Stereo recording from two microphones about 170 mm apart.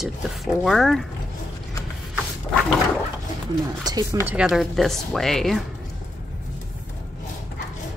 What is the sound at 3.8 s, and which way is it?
Speech, 20° right (ahead or behind).